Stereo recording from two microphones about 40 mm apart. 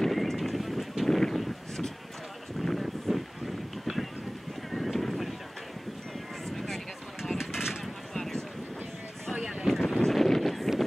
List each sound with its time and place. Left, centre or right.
0.0 s horse: centre
2.6 s wind: centre
3.8 s a sound: centre
4.6 s horse: centre
6.5 s a sound: centre
7.3 s vehicle: centre
7.8 s a sound: centre
9.4 s vehicle: centre
9.7 s wind noise: centre